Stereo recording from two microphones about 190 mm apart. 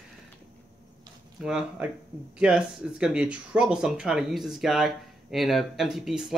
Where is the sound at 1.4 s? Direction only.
5° right (ahead or behind).